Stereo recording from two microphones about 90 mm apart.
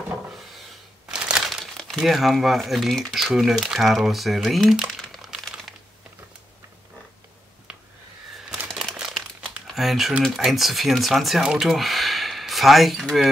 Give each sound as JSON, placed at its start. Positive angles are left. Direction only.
{"t": 1.0, "sound": "speech", "side_deg": -10}
{"t": 8.7, "sound": "speech", "side_deg": -5}